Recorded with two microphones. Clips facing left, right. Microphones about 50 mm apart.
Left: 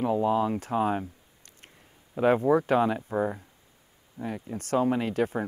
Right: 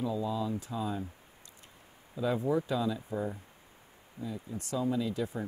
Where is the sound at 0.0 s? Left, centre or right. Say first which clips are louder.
Left 8 dB; left.